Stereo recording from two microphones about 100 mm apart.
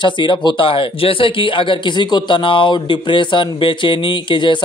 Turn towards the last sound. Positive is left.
turn(degrees=55)  # may be behind; listen again after turning